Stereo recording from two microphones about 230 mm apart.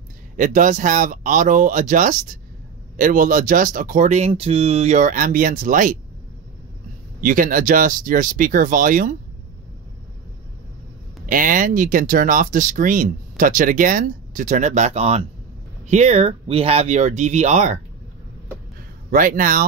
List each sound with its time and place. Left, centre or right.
0.4 s speech: right
7.2 s speech: right
11.2 s speech: right
19.0 s speech: right